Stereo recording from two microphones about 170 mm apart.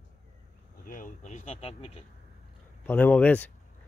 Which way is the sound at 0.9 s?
50° left (ahead or behind).